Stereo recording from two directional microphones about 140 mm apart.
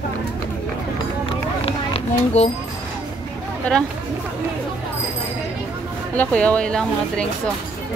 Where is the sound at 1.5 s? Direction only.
45° left (ahead or behind).